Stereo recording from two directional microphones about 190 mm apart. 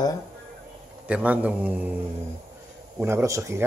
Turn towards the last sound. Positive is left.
turn(degrees=-15)  # may be behind; listen again after turning